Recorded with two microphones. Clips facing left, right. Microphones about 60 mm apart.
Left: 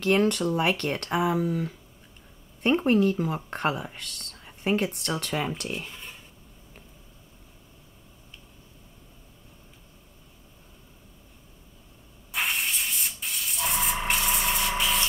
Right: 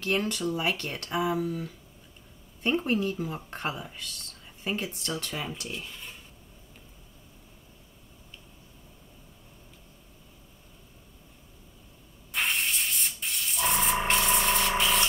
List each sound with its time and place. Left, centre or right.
0.0 s speech: left
12.3 s music: centre
14.0 s a sound: centre